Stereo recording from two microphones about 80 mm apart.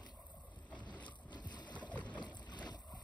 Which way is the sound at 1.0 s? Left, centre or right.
Left.